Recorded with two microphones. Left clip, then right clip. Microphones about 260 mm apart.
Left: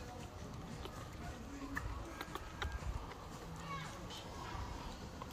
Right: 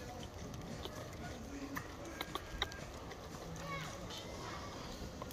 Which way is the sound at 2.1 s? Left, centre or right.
Centre.